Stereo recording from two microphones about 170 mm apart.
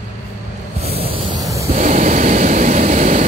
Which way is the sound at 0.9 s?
35° right (ahead or behind).